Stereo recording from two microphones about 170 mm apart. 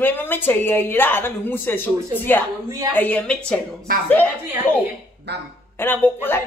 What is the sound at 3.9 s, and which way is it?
Speech, 55° right (ahead or behind).